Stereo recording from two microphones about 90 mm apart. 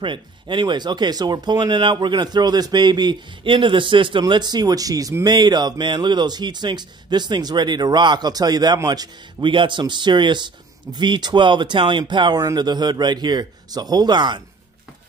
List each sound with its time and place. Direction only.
0.0 s speech: 65° right (ahead or behind)
4.2 s speech: 50° right (ahead or behind)
9.4 s speech: 65° right (ahead or behind)